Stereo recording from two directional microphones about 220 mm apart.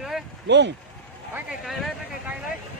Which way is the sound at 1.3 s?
5° right (ahead or behind).